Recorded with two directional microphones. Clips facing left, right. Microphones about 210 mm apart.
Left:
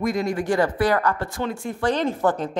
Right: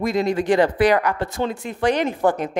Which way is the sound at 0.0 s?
25° right (ahead or behind).